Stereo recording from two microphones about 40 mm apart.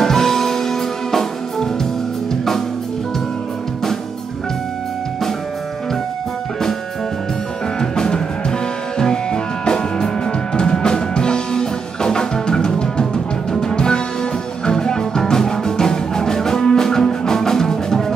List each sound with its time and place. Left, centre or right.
0.0 s music: centre
7.8 s music: centre